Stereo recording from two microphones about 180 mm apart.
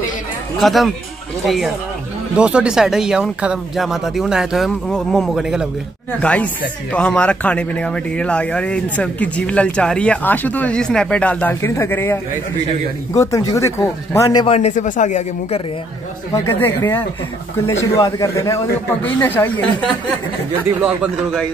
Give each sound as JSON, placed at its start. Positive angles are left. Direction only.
{"t": 0.6, "sound": "speech", "side_deg": 0}
{"t": 2.3, "sound": "speech", "side_deg": -5}
{"t": 14.4, "sound": "speech", "side_deg": 35}
{"t": 16.3, "sound": "speech", "side_deg": 15}